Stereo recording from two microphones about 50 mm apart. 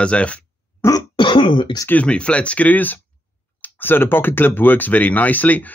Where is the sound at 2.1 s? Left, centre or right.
Left.